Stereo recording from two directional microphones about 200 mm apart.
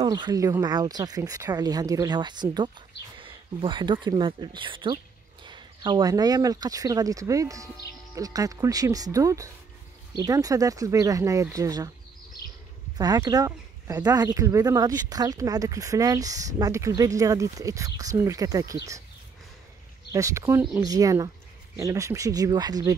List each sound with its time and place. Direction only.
0.0 s speech: 20° right (ahead or behind)
12.9 s speech: 20° right (ahead or behind)
20.1 s speech: 15° right (ahead or behind)